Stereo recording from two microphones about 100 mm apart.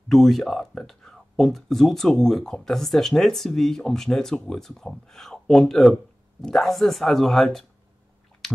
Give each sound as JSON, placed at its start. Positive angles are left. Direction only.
{"t": 0.1, "sound": "speech", "side_deg": 5}